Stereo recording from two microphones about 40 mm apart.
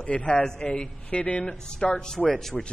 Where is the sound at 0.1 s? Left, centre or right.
Left.